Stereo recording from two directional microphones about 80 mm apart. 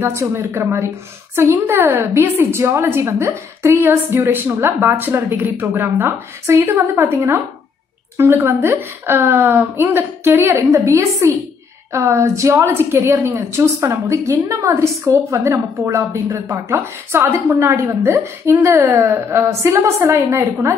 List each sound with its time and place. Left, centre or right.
0.0 s a woman's voice: right